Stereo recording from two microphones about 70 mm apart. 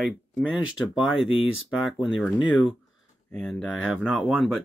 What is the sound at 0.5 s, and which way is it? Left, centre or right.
Speech, centre.